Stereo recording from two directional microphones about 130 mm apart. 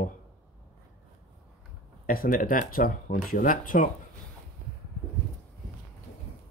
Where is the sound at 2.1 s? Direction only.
90° left.